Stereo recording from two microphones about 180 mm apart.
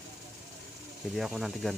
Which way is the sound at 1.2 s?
Centre (ahead or behind).